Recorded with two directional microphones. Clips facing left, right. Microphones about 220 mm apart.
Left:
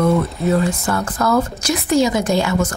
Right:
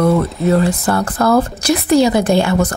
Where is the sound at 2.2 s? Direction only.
55° right (ahead or behind).